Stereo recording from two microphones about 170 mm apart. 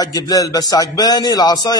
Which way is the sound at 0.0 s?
20° left (ahead or behind).